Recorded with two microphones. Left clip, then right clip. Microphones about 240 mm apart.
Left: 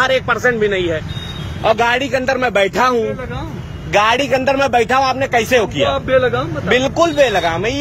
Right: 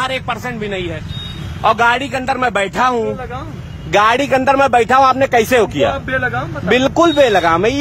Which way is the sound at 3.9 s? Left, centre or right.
Right.